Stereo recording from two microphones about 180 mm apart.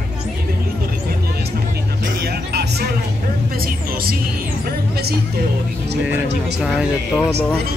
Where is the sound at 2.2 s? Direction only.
65° right (ahead or behind).